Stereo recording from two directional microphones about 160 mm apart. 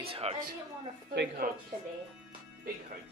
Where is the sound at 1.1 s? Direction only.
90° right.